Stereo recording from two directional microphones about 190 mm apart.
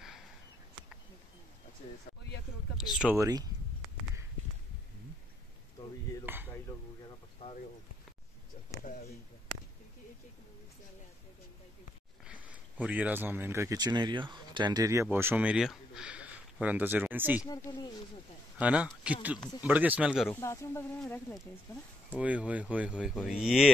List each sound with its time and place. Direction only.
2.8 s speech: 5° right (ahead or behind)
3.2 s speech: 20° right (ahead or behind)
6.2 s a sound: 10° right (ahead or behind)
12.3 s speech: 5° right (ahead or behind)
17.4 s speech: 15° left (ahead or behind)
18.6 s speech: 5° right (ahead or behind)
20.2 s speech: 15° left (ahead or behind)
22.1 s speech: 5° right (ahead or behind)